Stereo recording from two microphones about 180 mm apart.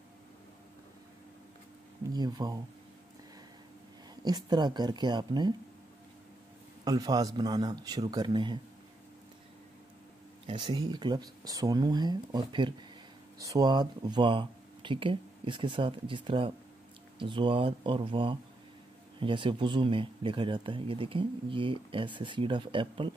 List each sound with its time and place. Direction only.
2.1 s speech: 20° right (ahead or behind)
4.2 s speech: 25° right (ahead or behind)
6.8 s speech: 20° right (ahead or behind)
10.4 s speech: 25° right (ahead or behind)